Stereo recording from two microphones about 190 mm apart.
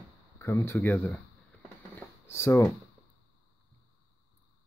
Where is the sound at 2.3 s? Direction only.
15° left (ahead or behind).